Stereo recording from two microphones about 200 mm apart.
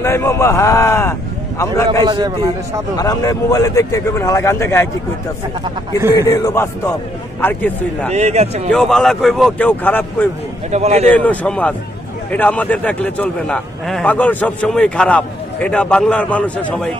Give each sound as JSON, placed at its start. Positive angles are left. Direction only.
{"t": 0.0, "sound": "a man's voice", "side_deg": 10}
{"t": 2.0, "sound": "a man's voice", "side_deg": -20}
{"t": 3.0, "sound": "a man's voice", "side_deg": 15}
{"t": 6.2, "sound": "a man's voice", "side_deg": 15}
{"t": 8.1, "sound": "speech", "side_deg": -30}
{"t": 8.7, "sound": "a man's voice", "side_deg": 0}
{"t": 10.7, "sound": "speech", "side_deg": -35}
{"t": 11.1, "sound": "a man's voice", "side_deg": 5}